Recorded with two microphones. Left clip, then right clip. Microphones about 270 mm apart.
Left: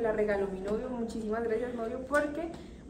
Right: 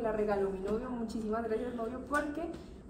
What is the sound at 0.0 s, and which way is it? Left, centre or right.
A woman's voice, centre.